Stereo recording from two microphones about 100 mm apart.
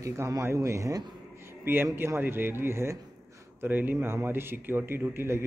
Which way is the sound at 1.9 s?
25° right (ahead or behind).